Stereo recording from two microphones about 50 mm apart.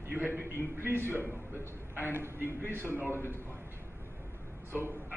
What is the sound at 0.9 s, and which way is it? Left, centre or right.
A man's voice, right.